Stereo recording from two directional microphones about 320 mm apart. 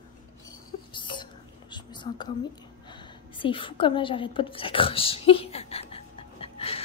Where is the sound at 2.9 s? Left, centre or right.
Centre.